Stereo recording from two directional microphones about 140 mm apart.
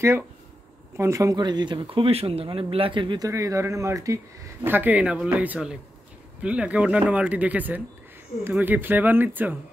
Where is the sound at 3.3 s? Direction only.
20° right (ahead or behind).